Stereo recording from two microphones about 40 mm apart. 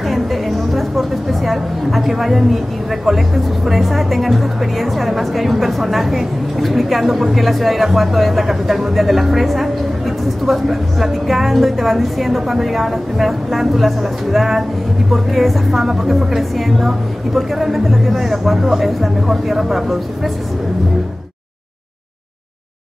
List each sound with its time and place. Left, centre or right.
0.1 s music: centre
3.6 s speech: centre